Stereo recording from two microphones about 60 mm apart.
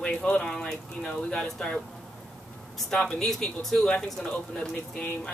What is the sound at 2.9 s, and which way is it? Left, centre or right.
Speech, centre.